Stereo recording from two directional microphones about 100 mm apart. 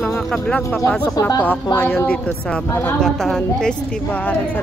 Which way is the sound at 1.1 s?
35° left (ahead or behind).